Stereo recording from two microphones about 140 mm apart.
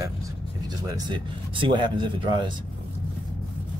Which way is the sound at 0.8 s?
30° right (ahead or behind).